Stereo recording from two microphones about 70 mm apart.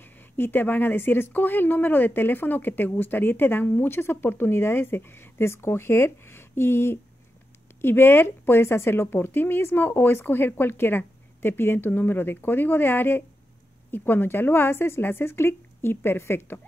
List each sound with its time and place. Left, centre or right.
0.0 s a woman's voice: left